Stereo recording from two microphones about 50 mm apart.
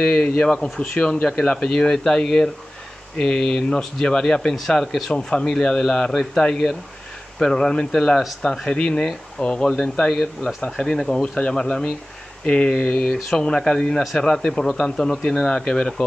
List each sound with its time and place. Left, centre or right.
0.0 s speech: left